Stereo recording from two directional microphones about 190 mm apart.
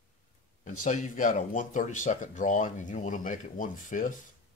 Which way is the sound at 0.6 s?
45° left (ahead or behind).